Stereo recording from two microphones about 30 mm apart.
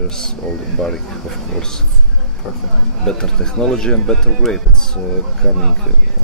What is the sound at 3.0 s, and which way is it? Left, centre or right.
Speech, left.